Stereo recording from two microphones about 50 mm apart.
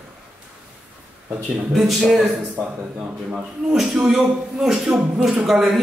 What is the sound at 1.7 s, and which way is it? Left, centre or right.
Speech, centre.